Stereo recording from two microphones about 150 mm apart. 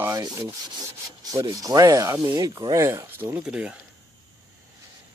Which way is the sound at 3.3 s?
5° right (ahead or behind).